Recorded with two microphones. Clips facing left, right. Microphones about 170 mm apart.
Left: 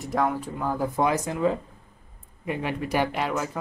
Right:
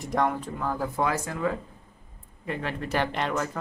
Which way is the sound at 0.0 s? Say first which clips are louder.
Left 1 dB; 5° left (ahead or behind).